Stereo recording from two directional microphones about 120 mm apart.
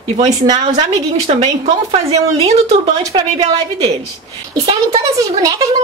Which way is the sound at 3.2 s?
60° right (ahead or behind).